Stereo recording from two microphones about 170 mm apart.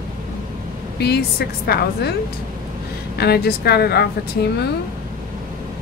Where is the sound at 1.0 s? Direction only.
70° left (ahead or behind).